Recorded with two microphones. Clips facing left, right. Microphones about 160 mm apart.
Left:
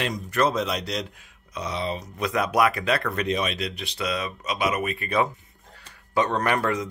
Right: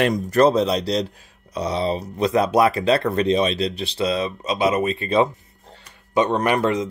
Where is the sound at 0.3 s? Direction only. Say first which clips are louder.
Right 6 dB; 35° right (ahead or behind).